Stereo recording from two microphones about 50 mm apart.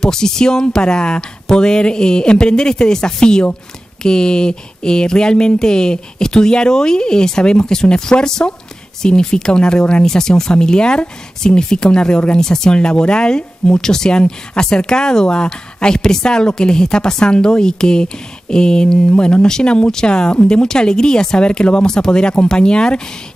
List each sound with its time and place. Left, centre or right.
0.0 s speech: centre